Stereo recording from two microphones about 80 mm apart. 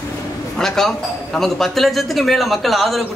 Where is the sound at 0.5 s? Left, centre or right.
Centre.